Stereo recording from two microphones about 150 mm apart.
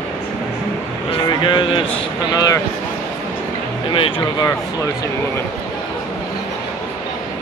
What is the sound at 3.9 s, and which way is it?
Speech, 35° left (ahead or behind).